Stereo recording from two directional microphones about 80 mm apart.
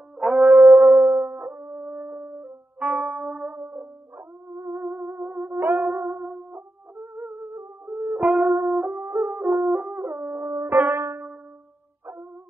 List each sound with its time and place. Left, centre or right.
0.2 s music: centre
4.8 s music: centre
6.5 s music: right
7.9 s music: centre
10.0 s howl: centre
10.4 s music: right
10.7 s music: centre